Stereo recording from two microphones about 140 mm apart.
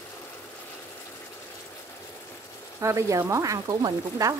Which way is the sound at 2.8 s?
20° right (ahead or behind).